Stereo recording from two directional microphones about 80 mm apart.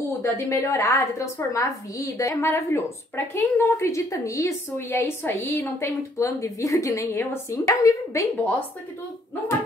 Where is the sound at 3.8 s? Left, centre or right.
Left.